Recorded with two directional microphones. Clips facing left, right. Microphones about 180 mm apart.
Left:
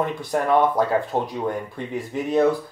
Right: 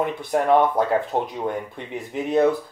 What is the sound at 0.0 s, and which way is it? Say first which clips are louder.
Speech: right 1 dB; 20° right (ahead or behind).